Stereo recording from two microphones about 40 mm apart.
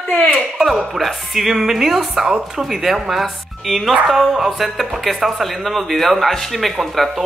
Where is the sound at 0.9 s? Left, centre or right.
Centre.